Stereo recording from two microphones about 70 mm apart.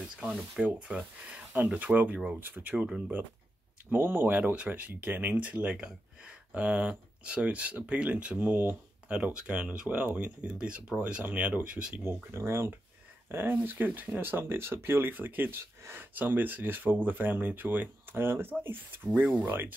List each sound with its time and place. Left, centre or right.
0.2 s speech: right
0.8 s speech: centre
3.9 s speech: right
9.1 s speech: centre
12.0 s speech: right